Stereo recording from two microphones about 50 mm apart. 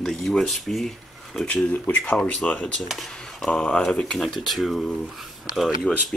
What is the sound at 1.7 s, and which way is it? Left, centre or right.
Speech, left.